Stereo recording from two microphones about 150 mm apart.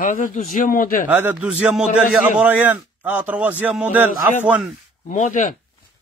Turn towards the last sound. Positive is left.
turn(degrees=60)  # may be behind; listen again after turning